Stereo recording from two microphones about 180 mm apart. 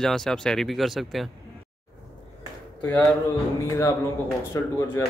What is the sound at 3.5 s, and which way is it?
Speech, 15° left (ahead or behind).